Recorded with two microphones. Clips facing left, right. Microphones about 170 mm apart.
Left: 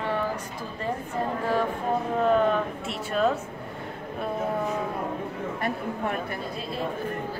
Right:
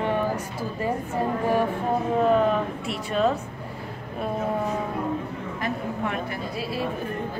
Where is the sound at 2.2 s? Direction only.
5° right (ahead or behind).